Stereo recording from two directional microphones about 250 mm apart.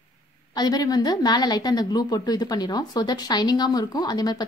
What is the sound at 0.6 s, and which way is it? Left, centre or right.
A woman's voice, centre.